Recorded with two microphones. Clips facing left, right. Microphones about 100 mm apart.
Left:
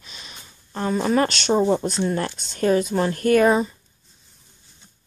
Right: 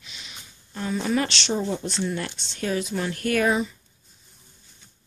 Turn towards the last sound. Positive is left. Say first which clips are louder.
# left 6 dB
turn(degrees=40)  # may be behind; listen again after turning